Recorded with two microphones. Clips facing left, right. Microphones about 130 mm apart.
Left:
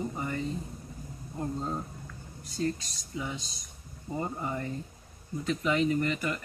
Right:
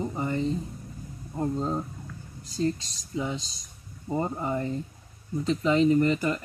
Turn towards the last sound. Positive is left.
turn(degrees=-30)  # may be behind; listen again after turning